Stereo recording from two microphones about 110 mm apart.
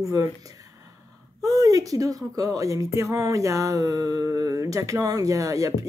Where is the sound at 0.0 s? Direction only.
30° right (ahead or behind).